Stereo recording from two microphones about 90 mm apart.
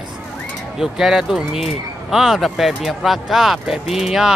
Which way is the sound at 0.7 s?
5° right (ahead or behind).